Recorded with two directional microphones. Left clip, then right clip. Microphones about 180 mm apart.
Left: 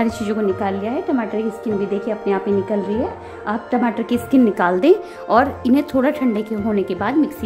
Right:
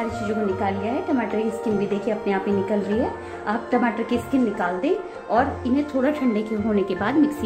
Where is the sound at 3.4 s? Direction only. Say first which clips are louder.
Left 2 dB; 50° left (ahead or behind).